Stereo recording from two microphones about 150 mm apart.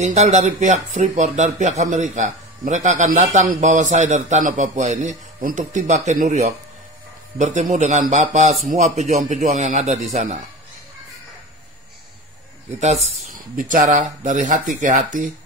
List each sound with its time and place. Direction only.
0.0 s speech: 50° right (ahead or behind)
12.8 s speech: 45° right (ahead or behind)
13.2 s speech: 60° right (ahead or behind)